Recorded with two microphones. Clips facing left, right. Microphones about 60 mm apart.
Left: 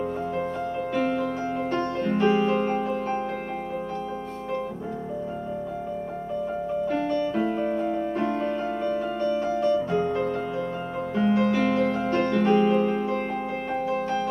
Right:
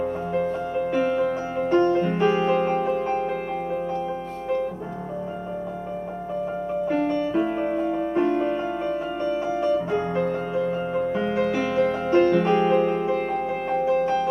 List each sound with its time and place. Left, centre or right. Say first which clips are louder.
0.0 s music: right 3 dB; centre
6.9 s music: right 4 dB; centre